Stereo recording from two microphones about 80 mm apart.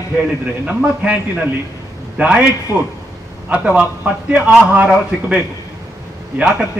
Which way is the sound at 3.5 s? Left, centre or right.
Centre.